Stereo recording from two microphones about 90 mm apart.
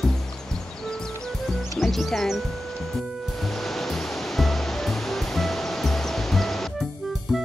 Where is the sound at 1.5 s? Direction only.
Centre (ahead or behind).